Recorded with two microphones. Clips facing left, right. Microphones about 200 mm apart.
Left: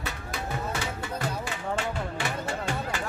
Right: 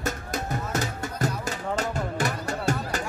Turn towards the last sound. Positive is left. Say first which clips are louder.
# right 4 dB
turn(degrees=-45)  # may be behind; listen again after turning